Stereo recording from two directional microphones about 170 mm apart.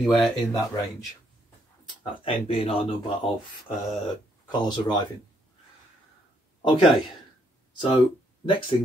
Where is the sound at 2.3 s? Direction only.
35° left (ahead or behind).